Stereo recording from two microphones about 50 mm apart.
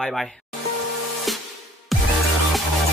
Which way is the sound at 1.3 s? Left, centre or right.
Centre.